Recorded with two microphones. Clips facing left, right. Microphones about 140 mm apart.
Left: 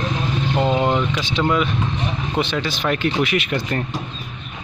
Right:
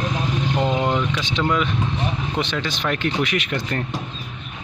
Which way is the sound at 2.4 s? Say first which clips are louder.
Left 2 dB; 10° left (ahead or behind).